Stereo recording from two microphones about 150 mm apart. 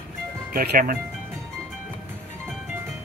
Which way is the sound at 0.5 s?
70° right (ahead or behind).